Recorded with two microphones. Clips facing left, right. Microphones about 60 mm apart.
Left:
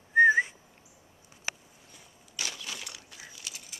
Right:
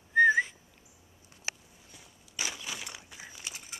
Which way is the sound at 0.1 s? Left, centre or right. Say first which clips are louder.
Left 2 dB; centre.